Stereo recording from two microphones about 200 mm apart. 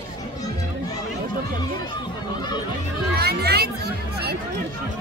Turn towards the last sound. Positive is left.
turn(degrees=-55)  # may be behind; listen again after turning